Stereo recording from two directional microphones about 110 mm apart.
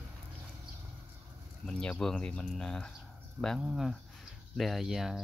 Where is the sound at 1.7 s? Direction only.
5° left (ahead or behind).